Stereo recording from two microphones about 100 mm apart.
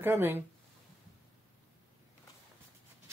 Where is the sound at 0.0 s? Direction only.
20° right (ahead or behind).